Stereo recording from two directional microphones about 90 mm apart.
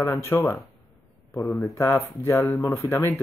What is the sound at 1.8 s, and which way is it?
Speech, 30° left (ahead or behind).